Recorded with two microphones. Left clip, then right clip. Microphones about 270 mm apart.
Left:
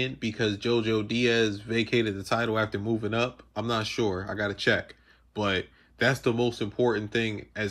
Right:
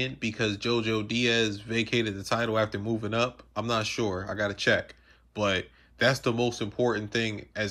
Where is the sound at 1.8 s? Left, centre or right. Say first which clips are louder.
Left 1 dB; centre.